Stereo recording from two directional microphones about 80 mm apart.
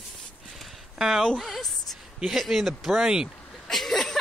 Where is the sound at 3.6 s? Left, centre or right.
Centre.